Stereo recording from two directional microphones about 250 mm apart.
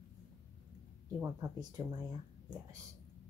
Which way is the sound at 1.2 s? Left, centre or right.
Centre.